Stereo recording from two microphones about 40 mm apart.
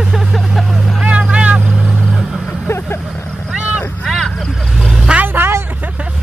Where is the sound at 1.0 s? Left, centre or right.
Right.